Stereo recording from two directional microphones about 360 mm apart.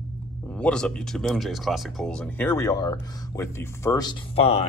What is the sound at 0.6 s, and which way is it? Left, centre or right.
Speech, centre.